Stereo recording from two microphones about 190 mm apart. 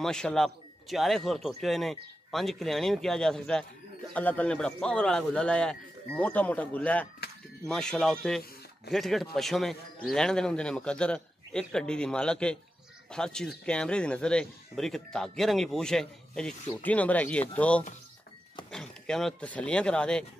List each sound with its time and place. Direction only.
0.0 s speech: 5° left (ahead or behind)